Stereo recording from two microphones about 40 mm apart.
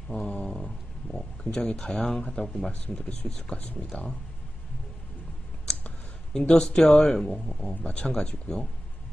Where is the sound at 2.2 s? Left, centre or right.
Left.